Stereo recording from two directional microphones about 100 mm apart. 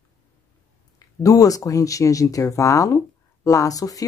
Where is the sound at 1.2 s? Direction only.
35° left (ahead or behind).